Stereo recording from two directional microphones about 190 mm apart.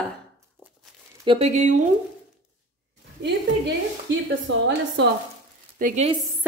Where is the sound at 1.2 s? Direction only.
35° right (ahead or behind).